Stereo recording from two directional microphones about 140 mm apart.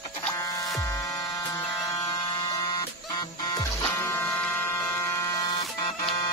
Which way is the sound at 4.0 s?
20° left (ahead or behind).